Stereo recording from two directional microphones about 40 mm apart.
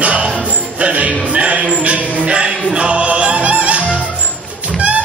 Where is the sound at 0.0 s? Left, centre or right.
Right.